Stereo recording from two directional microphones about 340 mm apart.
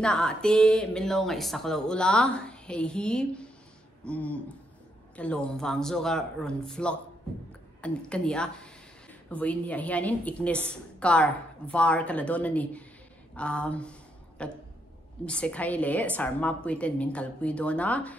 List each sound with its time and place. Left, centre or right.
0.0 s speech: centre